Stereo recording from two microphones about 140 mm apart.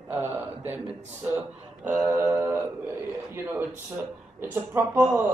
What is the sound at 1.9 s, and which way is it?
Speech, 20° right (ahead or behind).